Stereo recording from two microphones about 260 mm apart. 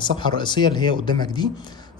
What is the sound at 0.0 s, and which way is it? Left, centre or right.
Speech, centre.